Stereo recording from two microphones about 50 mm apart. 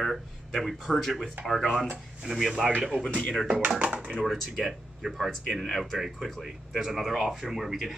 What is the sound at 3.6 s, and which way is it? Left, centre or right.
Speech, right.